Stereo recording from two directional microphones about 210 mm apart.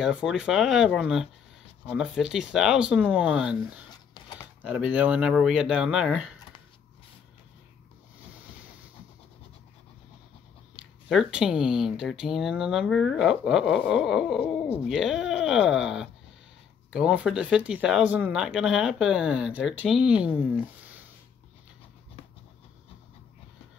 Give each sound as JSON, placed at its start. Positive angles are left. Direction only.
{"t": 0.0, "sound": "speech", "side_deg": -5}
{"t": 4.1, "sound": "a sound", "side_deg": 20}
{"t": 4.6, "sound": "speech", "side_deg": -5}
{"t": 10.8, "sound": "speech", "side_deg": 0}